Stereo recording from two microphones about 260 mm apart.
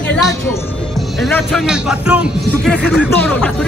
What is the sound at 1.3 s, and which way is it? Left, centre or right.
Speech, centre.